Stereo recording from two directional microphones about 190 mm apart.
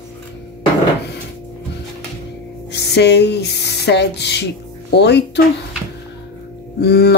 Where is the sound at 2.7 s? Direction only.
60° left (ahead or behind).